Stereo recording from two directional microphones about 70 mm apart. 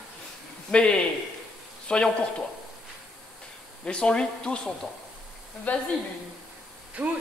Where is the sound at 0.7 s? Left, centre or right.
Centre.